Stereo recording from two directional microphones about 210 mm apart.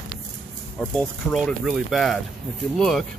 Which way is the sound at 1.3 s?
Centre (ahead or behind).